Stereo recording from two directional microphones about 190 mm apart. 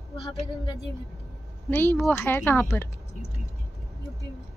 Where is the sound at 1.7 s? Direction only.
10° left (ahead or behind).